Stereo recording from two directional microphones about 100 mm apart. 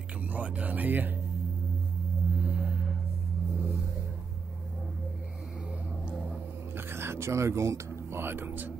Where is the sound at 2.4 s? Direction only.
10° right (ahead or behind).